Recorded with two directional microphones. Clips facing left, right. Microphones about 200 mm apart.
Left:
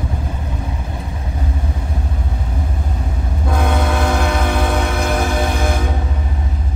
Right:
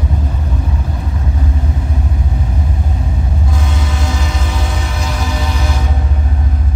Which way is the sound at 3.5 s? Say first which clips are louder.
Left 4 dB; 55° left (ahead or behind).